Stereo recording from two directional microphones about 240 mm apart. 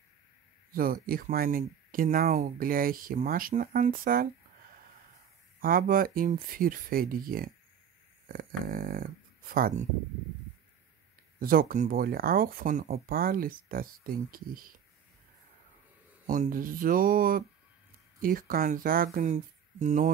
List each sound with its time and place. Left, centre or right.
0.7 s speech: right
5.6 s speech: right
11.3 s speech: right
16.3 s speech: right